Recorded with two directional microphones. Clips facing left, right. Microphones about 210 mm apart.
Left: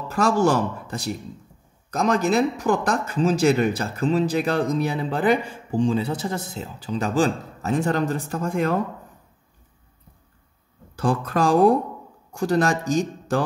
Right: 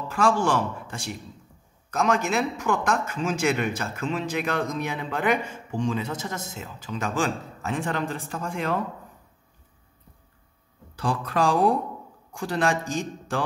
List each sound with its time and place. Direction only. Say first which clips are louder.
0.1 s a man's voice: left 3 dB; 40° left (ahead or behind)
11.0 s a man's voice: left 3 dB; 45° left (ahead or behind)